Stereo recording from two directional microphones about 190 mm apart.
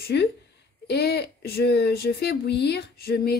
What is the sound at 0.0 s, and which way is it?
A woman's voice, 60° left (ahead or behind).